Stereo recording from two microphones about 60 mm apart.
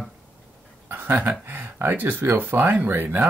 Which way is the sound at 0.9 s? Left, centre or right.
Right.